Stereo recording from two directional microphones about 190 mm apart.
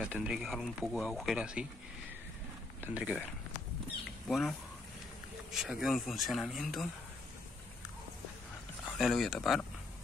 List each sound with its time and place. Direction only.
0.0 s speech: 5° right (ahead or behind)
2.8 s speech: 5° right (ahead or behind)
4.3 s speech: centre (ahead or behind)
8.9 s speech: centre (ahead or behind)